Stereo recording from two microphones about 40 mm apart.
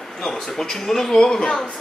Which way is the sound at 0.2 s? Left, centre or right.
Centre.